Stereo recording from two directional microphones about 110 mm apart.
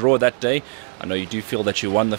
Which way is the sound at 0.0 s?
10° left (ahead or behind).